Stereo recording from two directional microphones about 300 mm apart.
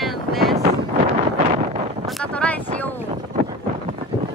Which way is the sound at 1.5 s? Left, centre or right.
Right.